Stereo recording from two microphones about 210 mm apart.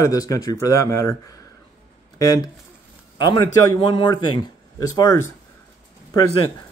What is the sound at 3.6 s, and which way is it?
Speech, 20° left (ahead or behind).